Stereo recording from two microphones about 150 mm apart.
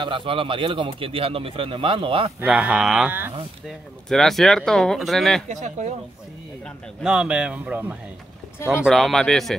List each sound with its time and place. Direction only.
0.0 s speech: 35° right (ahead or behind)
2.4 s speech: 5° right (ahead or behind)
4.1 s speech: centre (ahead or behind)
5.5 s speech: 50° right (ahead or behind)
7.0 s speech: 5° right (ahead or behind)
8.9 s speech: centre (ahead or behind)